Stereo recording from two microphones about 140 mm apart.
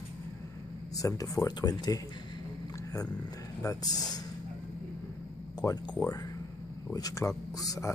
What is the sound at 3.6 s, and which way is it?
Speech, 25° left (ahead or behind).